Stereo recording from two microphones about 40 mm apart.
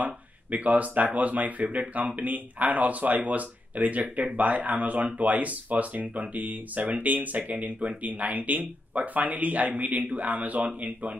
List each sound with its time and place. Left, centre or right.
0.0 s speech: right